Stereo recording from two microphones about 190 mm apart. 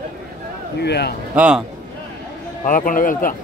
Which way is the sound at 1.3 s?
5° right (ahead or behind).